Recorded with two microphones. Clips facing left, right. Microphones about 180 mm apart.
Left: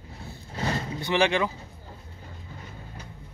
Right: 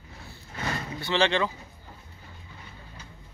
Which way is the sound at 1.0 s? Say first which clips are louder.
Left 1 dB; 15° left (ahead or behind).